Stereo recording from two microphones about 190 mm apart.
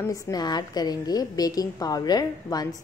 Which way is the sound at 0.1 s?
20° left (ahead or behind).